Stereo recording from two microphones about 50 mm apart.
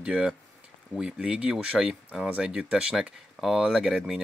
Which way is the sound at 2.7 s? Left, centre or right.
Centre.